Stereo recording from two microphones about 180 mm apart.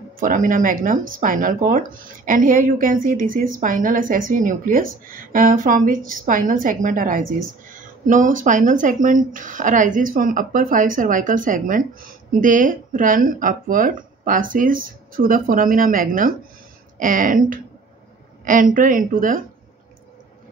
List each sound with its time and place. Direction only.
0.2 s speech: 50° right (ahead or behind)